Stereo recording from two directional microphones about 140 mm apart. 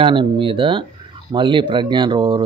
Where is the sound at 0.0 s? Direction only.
35° right (ahead or behind).